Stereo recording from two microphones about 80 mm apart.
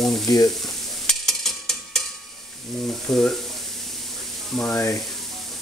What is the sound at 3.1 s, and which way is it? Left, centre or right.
Speech, centre.